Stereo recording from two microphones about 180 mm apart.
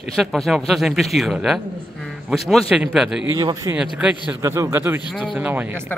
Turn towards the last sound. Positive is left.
turn(degrees=-10)  # may be behind; listen again after turning